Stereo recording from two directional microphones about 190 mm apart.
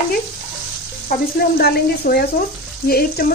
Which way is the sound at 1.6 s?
55° left (ahead or behind).